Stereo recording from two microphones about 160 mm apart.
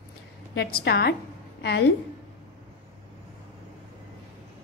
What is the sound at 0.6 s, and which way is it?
A woman's voice, 80° left.